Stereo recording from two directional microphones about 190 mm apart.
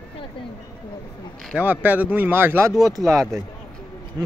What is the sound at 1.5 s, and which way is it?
Speech, 10° right (ahead or behind).